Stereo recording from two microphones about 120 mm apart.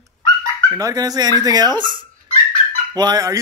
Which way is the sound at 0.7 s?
30° right (ahead or behind).